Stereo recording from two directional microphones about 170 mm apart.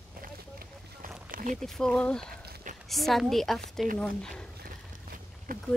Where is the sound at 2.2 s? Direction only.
60° right (ahead or behind).